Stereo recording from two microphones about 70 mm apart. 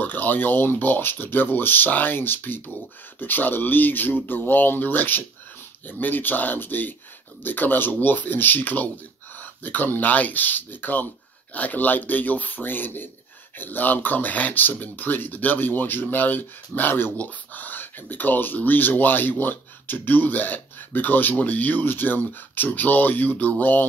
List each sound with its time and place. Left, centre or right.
0.0 s speech: left